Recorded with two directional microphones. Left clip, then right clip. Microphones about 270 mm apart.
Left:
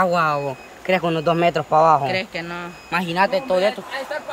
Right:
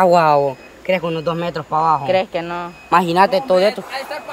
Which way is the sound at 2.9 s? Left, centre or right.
Centre.